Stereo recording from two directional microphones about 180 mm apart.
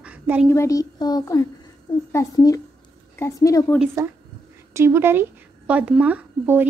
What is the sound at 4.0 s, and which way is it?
Speech, 20° right (ahead or behind).